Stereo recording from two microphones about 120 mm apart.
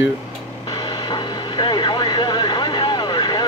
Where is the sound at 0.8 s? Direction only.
40° left (ahead or behind).